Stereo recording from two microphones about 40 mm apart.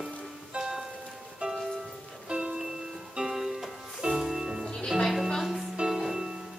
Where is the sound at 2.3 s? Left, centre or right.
Right.